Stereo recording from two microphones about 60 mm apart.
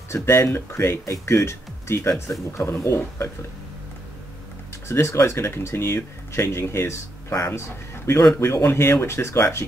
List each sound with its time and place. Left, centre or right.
0.1 s speech: left
5.0 s a man's voice: left